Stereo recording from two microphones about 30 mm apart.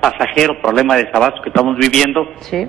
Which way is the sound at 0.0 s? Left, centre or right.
Centre.